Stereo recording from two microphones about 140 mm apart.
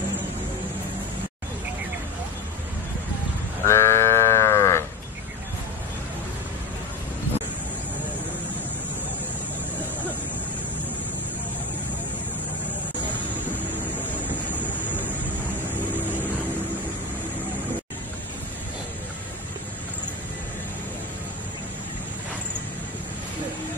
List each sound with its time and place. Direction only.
3.6 s sheep: 20° left (ahead or behind)